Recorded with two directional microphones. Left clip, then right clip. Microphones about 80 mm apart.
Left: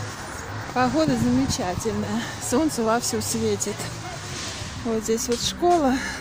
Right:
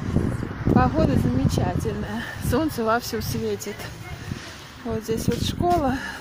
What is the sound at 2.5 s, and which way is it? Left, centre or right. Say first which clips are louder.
Speech: even; right.